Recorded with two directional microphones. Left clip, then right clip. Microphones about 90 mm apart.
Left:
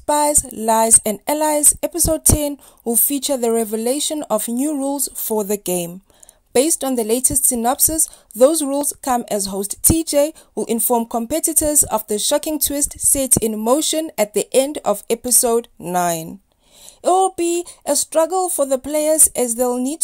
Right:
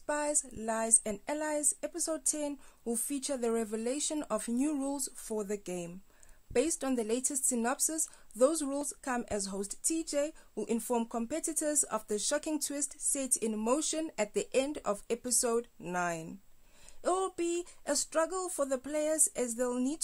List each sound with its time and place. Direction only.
0.0 s music: 55° left (ahead or behind)
0.5 s speech: 90° left; by 5.1 s 35° left (ahead or behind)
5.2 s speech: 65° left (ahead or behind); by 5.9 s 90° left
6.5 s a woman's voice: 40° left (ahead or behind)
9.8 s speech: 65° left (ahead or behind); by 15.9 s 40° left (ahead or behind)
15.9 s speech: 70° left (ahead or behind)
17.0 s a woman's voice: 35° left (ahead or behind)